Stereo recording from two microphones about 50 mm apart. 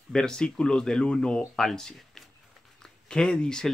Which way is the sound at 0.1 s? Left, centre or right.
Centre.